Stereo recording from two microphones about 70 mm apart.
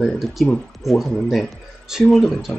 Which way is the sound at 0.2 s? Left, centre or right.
Centre.